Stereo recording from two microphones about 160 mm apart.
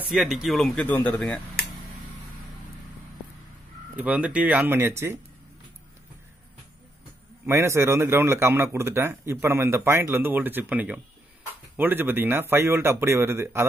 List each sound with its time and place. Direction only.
0.0 s speech: 5° right (ahead or behind)
3.9 s speech: 10° right (ahead or behind)
7.4 s speech: 15° right (ahead or behind)